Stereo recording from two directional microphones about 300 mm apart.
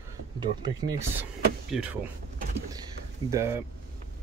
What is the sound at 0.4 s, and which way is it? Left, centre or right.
Speech, centre.